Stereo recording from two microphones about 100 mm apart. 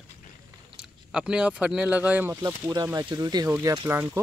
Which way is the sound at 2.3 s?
30° right (ahead or behind).